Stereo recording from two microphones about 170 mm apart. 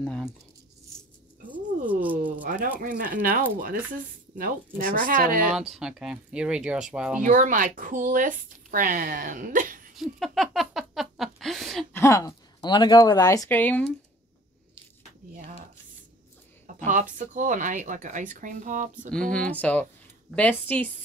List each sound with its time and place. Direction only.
0.0 s rattle: centre (ahead or behind)
1.9 s rattle: 10° right (ahead or behind)
2.4 s speech: 50° right (ahead or behind)
5.5 s speech: 5° right (ahead or behind)
7.2 s speech: 50° right (ahead or behind)
9.9 s a sound: centre (ahead or behind)
11.9 s speech: 15° left (ahead or behind)
13.5 s speech: 10° left (ahead or behind)
16.6 s a sound: 50° right (ahead or behind)
17.2 s speech: 45° right (ahead or behind)
19.0 s speech: 5° left (ahead or behind)